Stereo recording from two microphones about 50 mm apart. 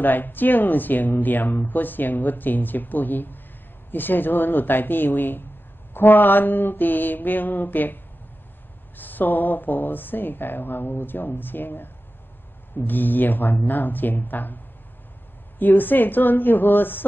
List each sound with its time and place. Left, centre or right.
0.0 s speech: left
15.6 s speech: left